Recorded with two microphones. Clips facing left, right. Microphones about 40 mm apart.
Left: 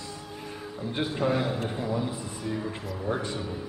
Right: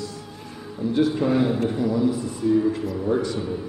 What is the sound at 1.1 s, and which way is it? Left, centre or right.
Speech, centre.